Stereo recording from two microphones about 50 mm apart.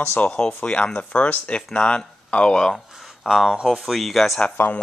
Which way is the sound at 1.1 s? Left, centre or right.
Left.